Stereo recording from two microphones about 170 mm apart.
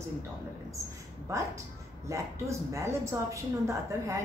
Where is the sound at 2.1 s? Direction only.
15° right (ahead or behind).